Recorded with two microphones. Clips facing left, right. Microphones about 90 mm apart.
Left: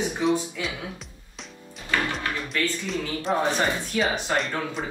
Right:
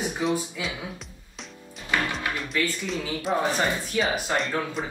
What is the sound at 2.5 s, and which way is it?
Speech, centre (ahead or behind).